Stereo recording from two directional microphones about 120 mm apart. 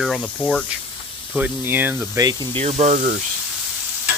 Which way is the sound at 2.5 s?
60° right (ahead or behind).